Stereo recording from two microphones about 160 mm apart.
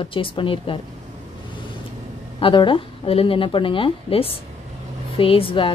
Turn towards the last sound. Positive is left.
turn(degrees=35)  # may be behind; listen again after turning